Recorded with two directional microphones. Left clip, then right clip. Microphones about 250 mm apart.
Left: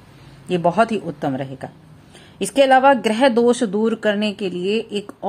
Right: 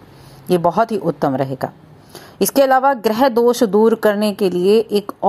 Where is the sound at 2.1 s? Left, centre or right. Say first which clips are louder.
Right 6 dB; centre.